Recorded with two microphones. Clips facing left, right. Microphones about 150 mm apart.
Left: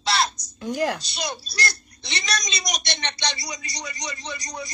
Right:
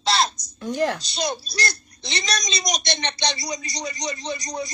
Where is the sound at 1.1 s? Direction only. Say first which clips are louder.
Right 4 dB; 25° right (ahead or behind).